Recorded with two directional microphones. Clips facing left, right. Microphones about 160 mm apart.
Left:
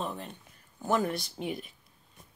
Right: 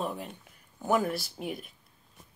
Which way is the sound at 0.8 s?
5° right (ahead or behind).